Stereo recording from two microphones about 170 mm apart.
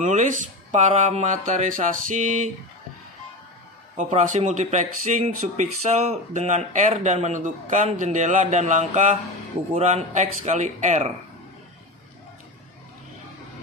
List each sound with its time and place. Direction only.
0.0 s speech: 45° right (ahead or behind)
3.9 s speech: 45° right (ahead or behind)